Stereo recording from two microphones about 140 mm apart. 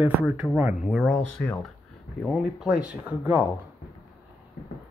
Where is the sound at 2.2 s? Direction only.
5° right (ahead or behind).